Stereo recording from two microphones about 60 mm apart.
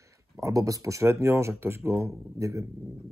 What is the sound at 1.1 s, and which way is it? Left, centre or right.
Speech, right.